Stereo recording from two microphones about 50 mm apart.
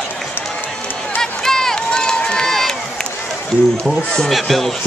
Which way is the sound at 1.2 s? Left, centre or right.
Centre.